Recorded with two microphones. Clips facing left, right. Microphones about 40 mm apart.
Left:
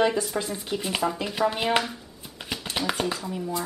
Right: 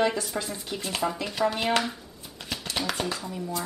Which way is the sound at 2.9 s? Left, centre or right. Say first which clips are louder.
Left 4 dB; centre.